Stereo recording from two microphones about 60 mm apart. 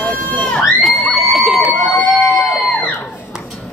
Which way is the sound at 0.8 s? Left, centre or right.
Centre.